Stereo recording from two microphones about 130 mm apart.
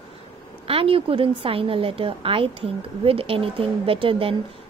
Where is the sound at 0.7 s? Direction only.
45° right (ahead or behind).